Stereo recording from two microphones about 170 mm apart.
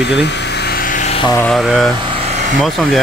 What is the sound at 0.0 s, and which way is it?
Vehicle, 90° left.